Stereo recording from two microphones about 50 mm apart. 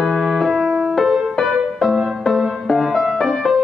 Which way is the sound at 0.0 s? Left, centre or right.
Centre.